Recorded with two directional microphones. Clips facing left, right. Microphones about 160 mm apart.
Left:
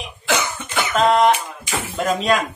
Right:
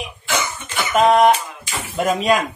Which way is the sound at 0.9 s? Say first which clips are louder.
Right 2 dB; 5° right (ahead or behind).